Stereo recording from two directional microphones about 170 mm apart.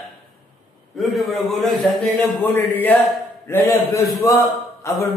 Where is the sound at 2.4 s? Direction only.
10° left (ahead or behind).